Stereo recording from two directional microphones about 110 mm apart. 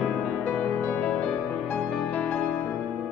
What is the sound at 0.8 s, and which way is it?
Music, 15° left (ahead or behind).